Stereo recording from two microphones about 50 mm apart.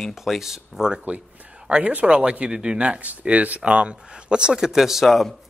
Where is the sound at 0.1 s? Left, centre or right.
Centre.